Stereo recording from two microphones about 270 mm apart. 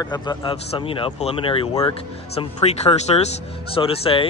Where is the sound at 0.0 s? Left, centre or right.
Centre.